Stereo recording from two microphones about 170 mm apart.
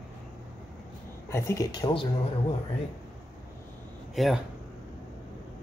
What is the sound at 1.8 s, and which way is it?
Speech, 30° left (ahead or behind).